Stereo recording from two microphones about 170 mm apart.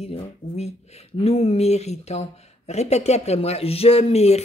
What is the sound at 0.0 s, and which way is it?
Speech, 40° left (ahead or behind).